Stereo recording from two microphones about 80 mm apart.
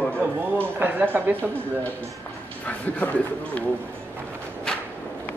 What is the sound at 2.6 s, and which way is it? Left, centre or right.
Speech, centre.